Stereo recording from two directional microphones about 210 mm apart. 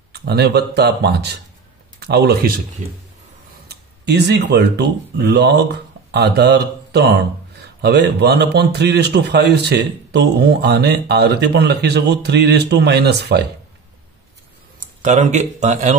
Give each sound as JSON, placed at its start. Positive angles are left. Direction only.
{"t": 0.1, "sound": "a man's voice", "side_deg": -50}
{"t": 2.8, "sound": "speech", "side_deg": -35}
{"t": 3.6, "sound": "a man's voice", "side_deg": -50}
{"t": 15.0, "sound": "speech", "side_deg": -35}